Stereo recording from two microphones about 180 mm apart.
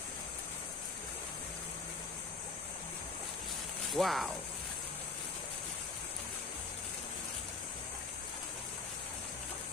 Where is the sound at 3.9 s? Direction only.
Centre (ahead or behind).